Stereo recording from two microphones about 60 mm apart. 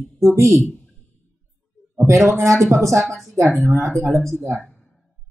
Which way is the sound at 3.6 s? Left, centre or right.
Right.